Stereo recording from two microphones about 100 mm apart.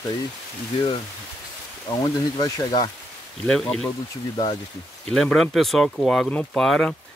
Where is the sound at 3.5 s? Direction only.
5° left (ahead or behind).